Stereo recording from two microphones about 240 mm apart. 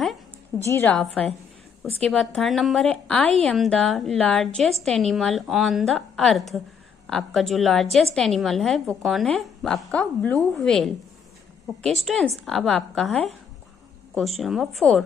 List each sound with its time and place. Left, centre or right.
0.7 s a woman's voice: centre
2.0 s a woman's voice: centre